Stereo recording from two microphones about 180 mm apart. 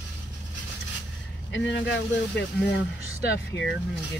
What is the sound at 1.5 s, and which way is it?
Speech, 80° left.